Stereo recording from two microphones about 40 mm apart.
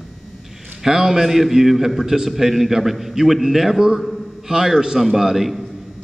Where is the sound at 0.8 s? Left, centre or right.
Centre.